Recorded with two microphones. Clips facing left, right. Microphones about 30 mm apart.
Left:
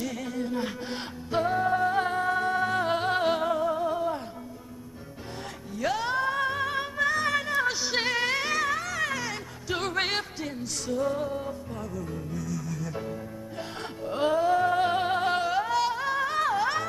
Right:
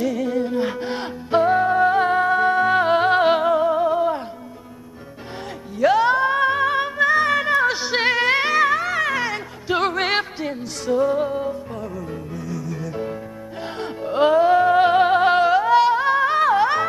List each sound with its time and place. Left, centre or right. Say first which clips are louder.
0.0 s music: right 10 dB; right
5.8 s music: right 11 dB; right